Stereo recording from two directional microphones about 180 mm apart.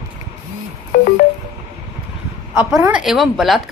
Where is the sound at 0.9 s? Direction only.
55° left (ahead or behind).